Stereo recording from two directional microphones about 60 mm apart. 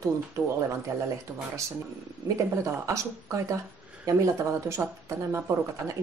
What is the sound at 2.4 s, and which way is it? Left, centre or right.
Speech, right.